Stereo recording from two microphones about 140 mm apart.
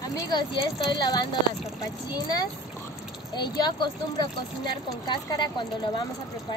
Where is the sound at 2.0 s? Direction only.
25° left (ahead or behind).